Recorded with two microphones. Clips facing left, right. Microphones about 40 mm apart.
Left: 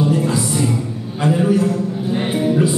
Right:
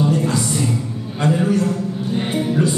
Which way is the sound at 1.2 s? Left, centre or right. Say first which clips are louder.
Left 2 dB; centre.